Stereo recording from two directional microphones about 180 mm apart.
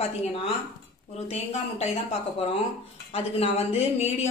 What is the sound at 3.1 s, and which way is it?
Speech, 35° left (ahead or behind).